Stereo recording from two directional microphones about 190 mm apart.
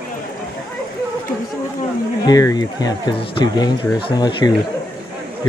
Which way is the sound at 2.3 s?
20° left (ahead or behind).